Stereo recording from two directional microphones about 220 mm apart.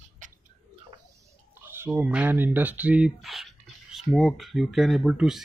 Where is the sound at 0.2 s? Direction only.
35° right (ahead or behind).